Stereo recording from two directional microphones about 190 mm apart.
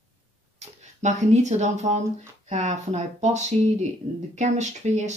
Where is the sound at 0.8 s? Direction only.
40° right (ahead or behind).